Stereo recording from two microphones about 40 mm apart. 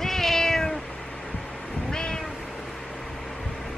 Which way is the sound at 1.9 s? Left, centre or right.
Left.